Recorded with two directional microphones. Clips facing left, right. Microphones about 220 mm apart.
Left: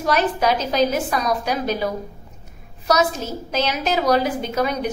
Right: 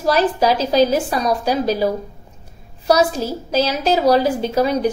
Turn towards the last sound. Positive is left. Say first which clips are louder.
# right 5 dB
turn(degrees=-30)  # may be behind; listen again after turning